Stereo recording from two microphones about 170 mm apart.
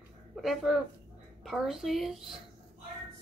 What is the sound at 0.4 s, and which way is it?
Speech, centre (ahead or behind).